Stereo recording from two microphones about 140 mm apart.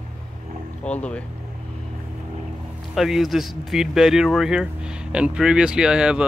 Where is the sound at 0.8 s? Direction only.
10° left (ahead or behind).